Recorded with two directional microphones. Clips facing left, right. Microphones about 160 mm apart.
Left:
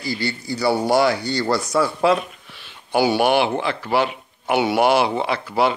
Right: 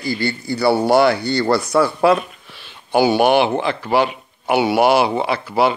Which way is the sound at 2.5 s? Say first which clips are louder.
Right 3 dB; 25° right (ahead or behind).